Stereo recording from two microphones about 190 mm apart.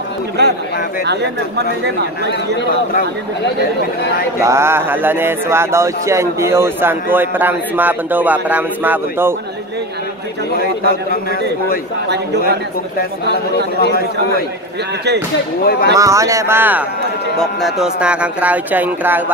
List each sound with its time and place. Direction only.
0.4 s a man's voice: 60° right (ahead or behind)
4.4 s speech: 15° right (ahead or behind)
10.6 s a man's voice: 50° left (ahead or behind)
13.7 s a man's voice: 55° left (ahead or behind)
15.6 s speech: 55° left (ahead or behind)
15.9 s speech: 15° right (ahead or behind)
17.4 s speech: centre (ahead or behind)